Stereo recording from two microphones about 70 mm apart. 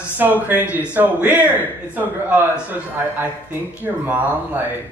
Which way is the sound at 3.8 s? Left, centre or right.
Right.